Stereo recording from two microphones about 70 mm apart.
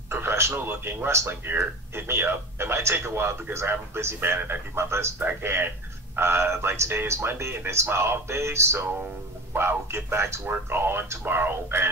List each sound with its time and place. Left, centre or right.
0.1 s speech: right